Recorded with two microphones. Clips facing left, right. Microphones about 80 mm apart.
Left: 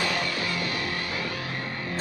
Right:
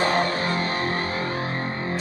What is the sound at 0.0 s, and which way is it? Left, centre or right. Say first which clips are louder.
Music: right 6 dB; right.